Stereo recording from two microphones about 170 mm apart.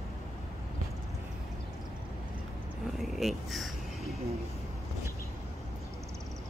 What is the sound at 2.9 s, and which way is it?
Speech, centre (ahead or behind).